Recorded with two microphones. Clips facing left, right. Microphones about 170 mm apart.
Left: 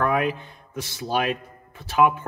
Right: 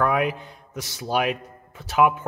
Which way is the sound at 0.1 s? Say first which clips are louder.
Even; 15° right (ahead or behind).